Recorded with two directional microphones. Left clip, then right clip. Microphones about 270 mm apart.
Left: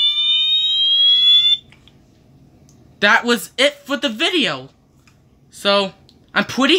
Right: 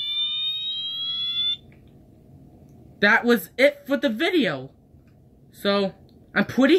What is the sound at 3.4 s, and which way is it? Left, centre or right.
Speech, left.